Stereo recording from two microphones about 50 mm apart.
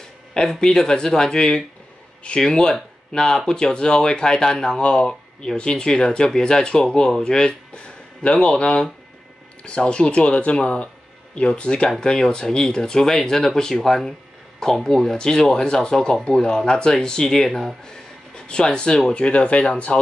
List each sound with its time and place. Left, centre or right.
0.3 s speech: centre
17.8 s speech: centre